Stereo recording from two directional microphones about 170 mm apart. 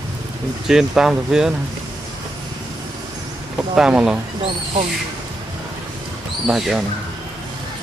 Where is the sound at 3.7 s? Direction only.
5° right (ahead or behind).